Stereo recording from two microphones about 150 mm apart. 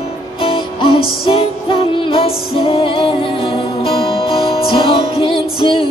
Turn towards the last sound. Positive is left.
turn(degrees=35)  # may be behind; listen again after turning